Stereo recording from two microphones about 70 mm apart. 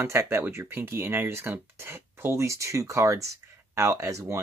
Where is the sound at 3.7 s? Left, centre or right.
Right.